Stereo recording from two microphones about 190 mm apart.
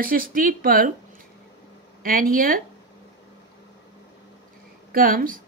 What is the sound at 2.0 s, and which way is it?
Speech, 50° right (ahead or behind).